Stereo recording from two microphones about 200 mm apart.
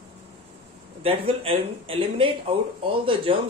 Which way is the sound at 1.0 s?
30° right (ahead or behind).